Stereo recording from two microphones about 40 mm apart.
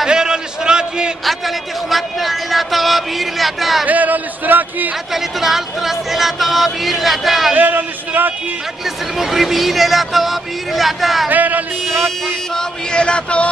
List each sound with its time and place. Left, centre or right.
0.0 s a sound: centre
1.2 s a man's voice: centre
3.8 s music: right
5.1 s a man's voice: centre
7.5 s music: right
8.8 s a man's voice: centre
11.2 s music: right
12.5 s a sound: left